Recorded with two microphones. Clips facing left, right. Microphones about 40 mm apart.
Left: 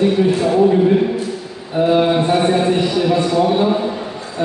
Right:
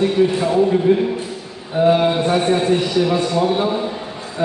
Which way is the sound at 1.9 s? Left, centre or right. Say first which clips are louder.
Left 2 dB; centre.